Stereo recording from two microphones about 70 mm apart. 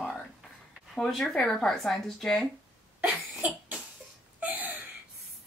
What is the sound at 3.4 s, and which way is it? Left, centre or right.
Speech, right.